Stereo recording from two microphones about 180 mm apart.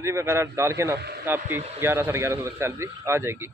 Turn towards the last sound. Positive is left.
turn(degrees=-15)  # may be behind; listen again after turning